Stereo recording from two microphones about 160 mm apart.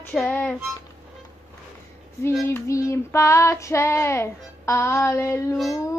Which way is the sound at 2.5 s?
20° left (ahead or behind).